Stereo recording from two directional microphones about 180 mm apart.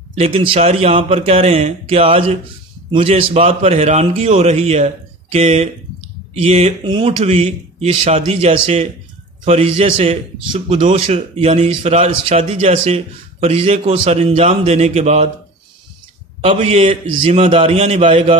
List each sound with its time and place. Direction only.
0.1 s speech: 35° right (ahead or behind)
16.6 s speech: 30° right (ahead or behind)